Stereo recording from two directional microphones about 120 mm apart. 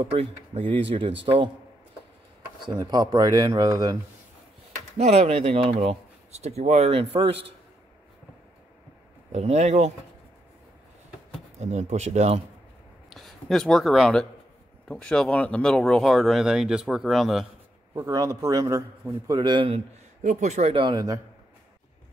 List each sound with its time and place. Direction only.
0.0 s speech: 50° right (ahead or behind)
2.6 s a man's voice: 35° right (ahead or behind)
4.9 s speech: 60° right (ahead or behind)
9.3 s speech: 65° right (ahead or behind)
11.6 s speech: 70° right (ahead or behind)
13.1 s speech: centre (ahead or behind)
17.9 s a man's voice: 30° right (ahead or behind)
20.2 s speech: 80° right
20.7 s speech: 40° right (ahead or behind)